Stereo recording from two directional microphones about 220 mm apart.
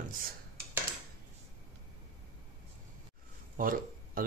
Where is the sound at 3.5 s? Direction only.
40° right (ahead or behind).